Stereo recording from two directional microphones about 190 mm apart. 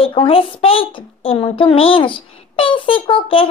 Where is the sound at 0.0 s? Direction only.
30° left (ahead or behind).